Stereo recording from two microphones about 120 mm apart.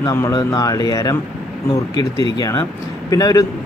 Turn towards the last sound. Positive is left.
turn(degrees=30)  # may be behind; listen again after turning